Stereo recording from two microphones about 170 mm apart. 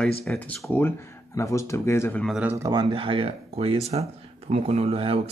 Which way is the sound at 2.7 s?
25° right (ahead or behind).